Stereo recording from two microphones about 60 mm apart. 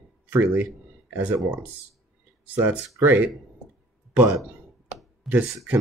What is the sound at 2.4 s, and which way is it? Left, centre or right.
Speech, right.